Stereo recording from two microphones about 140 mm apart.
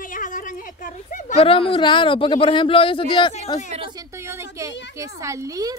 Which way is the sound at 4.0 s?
20° right (ahead or behind).